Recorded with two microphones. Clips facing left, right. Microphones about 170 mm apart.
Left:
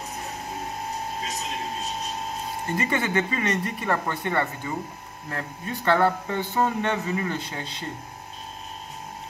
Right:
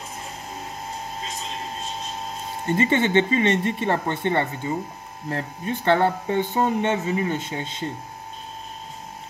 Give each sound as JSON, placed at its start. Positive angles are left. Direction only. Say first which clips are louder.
{"t": 2.8, "sound": "speech", "louder": "right 6 dB", "side_deg": -25}